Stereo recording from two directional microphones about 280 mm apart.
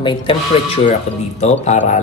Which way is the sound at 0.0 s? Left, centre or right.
Centre.